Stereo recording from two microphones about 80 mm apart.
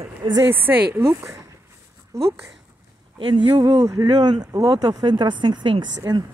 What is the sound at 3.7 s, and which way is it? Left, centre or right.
Speech, right.